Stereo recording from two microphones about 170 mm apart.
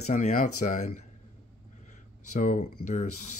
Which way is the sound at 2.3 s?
45° left (ahead or behind).